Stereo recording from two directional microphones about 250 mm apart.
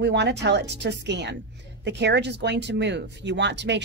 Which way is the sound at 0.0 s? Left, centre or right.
Right.